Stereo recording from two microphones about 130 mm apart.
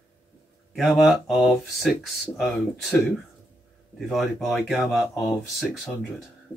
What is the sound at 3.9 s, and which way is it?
Speech, centre (ahead or behind).